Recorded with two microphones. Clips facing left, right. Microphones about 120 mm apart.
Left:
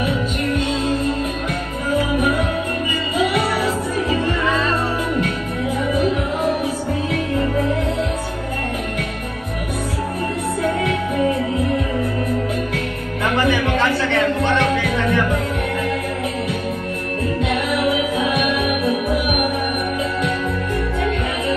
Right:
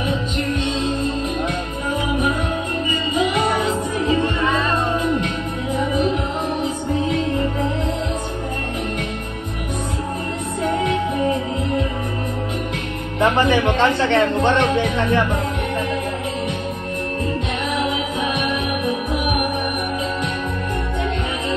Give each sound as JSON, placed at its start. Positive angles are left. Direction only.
{"t": 0.1, "sound": "music", "side_deg": -25}
{"t": 3.3, "sound": "music", "side_deg": -20}
{"t": 13.2, "sound": "music", "side_deg": -20}
{"t": 17.7, "sound": "music", "side_deg": -20}